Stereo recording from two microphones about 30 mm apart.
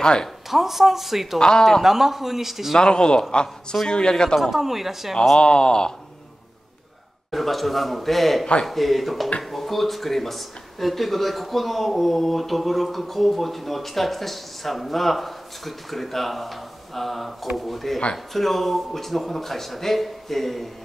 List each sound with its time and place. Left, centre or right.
0.0 s speech: left
0.5 s a woman's voice: centre
1.4 s speech: left
1.8 s a woman's voice: centre
2.8 s speech: left
4.4 s a woman's voice: centre
5.4 s speech: left
7.2 s speech: centre